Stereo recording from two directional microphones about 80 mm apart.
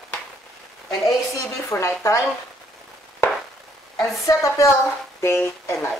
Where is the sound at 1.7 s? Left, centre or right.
Left.